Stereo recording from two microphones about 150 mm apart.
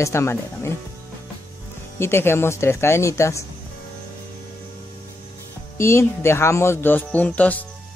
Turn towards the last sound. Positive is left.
turn(degrees=10)  # may be behind; listen again after turning